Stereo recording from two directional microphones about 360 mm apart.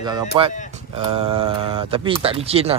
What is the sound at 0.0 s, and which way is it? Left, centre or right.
Speech, centre.